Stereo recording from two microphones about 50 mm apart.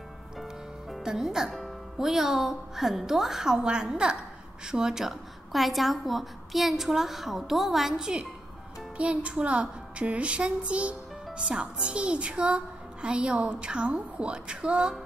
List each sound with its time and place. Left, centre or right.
0.4 s music: centre
1.0 s a woman's voice: centre
8.9 s a woman's voice: right